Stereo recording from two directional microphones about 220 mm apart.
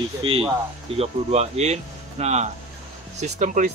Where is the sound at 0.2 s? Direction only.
25° right (ahead or behind).